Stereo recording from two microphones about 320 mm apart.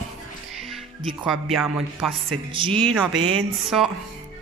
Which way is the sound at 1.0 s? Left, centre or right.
Centre.